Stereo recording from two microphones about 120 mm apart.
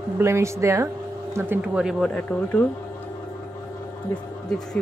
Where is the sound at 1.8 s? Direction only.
5° right (ahead or behind).